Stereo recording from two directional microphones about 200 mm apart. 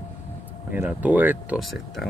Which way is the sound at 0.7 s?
10° right (ahead or behind).